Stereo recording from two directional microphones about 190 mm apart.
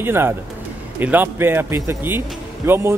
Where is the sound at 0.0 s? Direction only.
10° right (ahead or behind).